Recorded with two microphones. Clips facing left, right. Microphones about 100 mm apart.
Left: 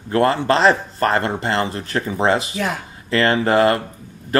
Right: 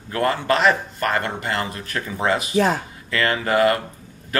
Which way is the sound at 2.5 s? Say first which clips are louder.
Right 5 dB; 35° right (ahead or behind).